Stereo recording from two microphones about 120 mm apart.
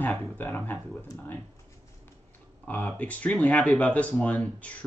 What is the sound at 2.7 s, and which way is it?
Speech, 15° left (ahead or behind).